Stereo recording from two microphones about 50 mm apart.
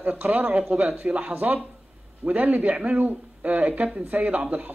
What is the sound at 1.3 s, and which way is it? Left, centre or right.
A man's voice, right.